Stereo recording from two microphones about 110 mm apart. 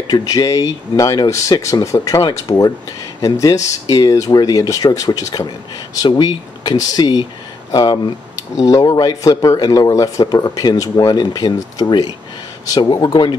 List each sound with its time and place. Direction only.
0.1 s speech: 35° left (ahead or behind)
6.0 s speech: 40° left (ahead or behind)